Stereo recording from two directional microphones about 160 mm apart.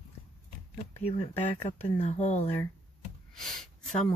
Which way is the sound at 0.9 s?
35° left (ahead or behind).